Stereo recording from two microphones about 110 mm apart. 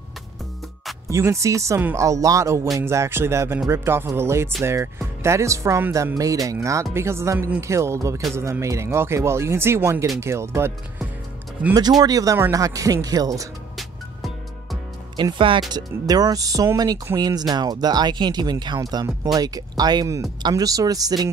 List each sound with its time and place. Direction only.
1.0 s speech: 25° right (ahead or behind)
6.1 s speech: 35° right (ahead or behind)
12.0 s speech: 35° right (ahead or behind)
13.7 s music: centre (ahead or behind)
15.1 s speech: 45° right (ahead or behind)
15.7 s speech: 35° right (ahead or behind)